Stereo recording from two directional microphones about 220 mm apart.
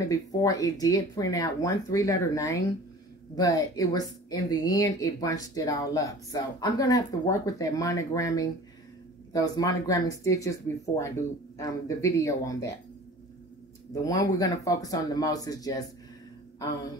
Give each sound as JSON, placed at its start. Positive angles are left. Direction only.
{"t": 0.0, "sound": "a woman's voice", "side_deg": 15}
{"t": 14.0, "sound": "a woman's voice", "side_deg": 15}